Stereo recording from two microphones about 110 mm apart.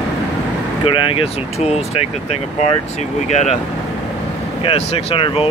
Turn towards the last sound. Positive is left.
turn(degrees=55)  # may be behind; listen again after turning